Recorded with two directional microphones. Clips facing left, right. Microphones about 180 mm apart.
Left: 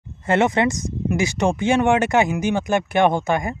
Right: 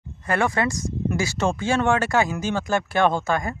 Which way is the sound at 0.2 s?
25° left (ahead or behind).